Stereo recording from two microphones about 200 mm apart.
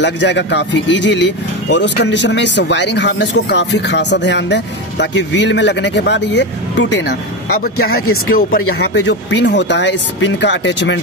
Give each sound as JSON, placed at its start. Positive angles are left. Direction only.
{"t": 0.0, "sound": "speech", "side_deg": 60}